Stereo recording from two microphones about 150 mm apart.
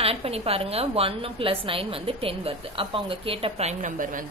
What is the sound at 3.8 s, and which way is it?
Speech, 60° right (ahead or behind).